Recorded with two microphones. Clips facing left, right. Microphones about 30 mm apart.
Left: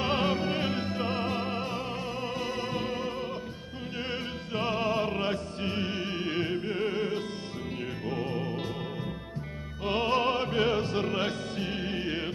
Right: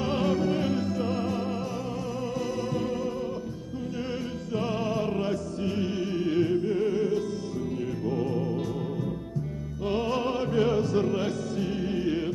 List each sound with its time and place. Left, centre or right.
0.0 s music: left
4.6 s music: left
9.8 s music: left